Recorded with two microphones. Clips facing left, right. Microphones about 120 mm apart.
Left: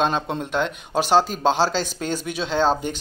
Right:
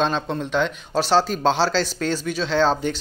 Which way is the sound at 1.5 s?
45° left (ahead or behind).